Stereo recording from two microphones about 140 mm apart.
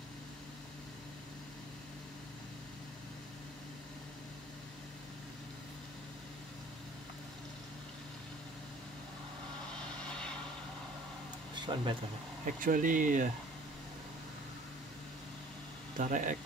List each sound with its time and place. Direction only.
11.6 s speech: 35° right (ahead or behind)
12.5 s speech: 75° right (ahead or behind)
16.0 s speech: 65° right (ahead or behind)